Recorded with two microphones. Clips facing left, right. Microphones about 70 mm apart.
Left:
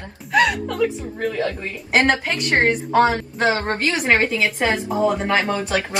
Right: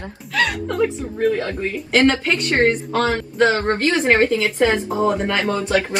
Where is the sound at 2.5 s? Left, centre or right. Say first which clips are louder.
Left 2 dB; left.